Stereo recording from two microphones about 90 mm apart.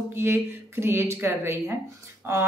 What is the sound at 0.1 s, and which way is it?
A woman's voice, 25° right (ahead or behind).